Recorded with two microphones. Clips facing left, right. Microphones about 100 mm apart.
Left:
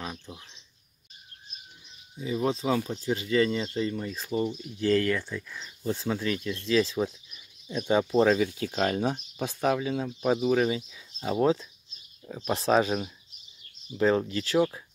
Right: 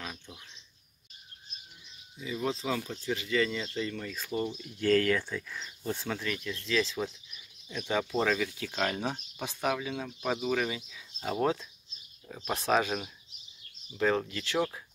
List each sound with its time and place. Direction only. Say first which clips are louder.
0.0 s a sound: left 5 dB; 20° left (ahead or behind)
2.1 s speech: left 5 dB; 35° left (ahead or behind)
4.8 s speech: left 1 dB; 5° left (ahead or behind)
6.0 s speech: left 5 dB; 20° left (ahead or behind)
12.3 s speech: left 5 dB; 20° left (ahead or behind)
12.5 s speech: left 4 dB; 30° left (ahead or behind)